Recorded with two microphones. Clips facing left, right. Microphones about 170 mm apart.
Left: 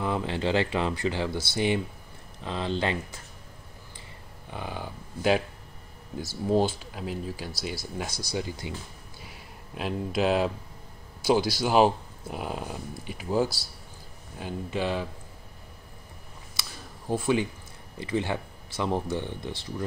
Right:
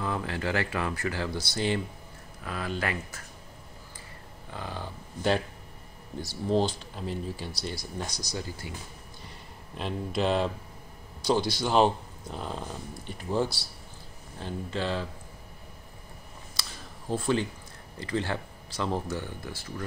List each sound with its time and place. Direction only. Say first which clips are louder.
0.0 s speech: left 3 dB; 20° left (ahead or behind)
4.5 s speech: left 2 dB; 15° left (ahead or behind)
9.2 s a sound: even; 5° left (ahead or behind)
11.2 s speech: left 3 dB; 5° left (ahead or behind)
14.4 s speech: left 2 dB; 15° left (ahead or behind)
17.1 s speech: left 2 dB; 15° left (ahead or behind)